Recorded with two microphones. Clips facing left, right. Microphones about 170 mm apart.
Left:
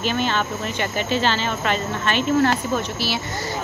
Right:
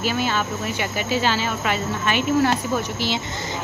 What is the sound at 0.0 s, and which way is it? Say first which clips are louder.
Speech: left 1 dB; 10° right (ahead or behind).